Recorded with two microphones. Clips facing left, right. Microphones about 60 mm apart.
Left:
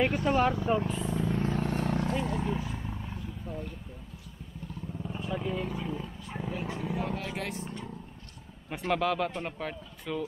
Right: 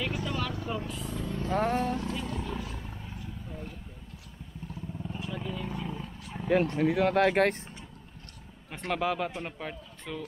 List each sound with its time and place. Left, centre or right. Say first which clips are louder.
0.2 s vehicle: left 7 dB; left
0.9 s vehicle: left 5 dB; centre
1.5 s speech: right 4 dB; right
1.8 s vehicle: left 1 dB; left
2.5 s vehicle: left 3 dB; centre
3.2 s a sound: left 3 dB; centre
5.0 s vehicle: left 4 dB; centre
5.7 s roaring cats: left 1 dB; centre
6.8 s speech: right 10 dB; right
8.6 s speech: left 3 dB; centre
9.0 s speech: left 1 dB; centre